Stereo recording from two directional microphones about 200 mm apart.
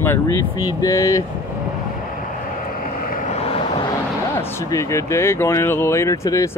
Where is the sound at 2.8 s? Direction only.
45° left (ahead or behind).